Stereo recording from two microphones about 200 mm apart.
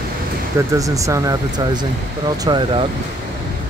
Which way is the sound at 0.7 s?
15° right (ahead or behind).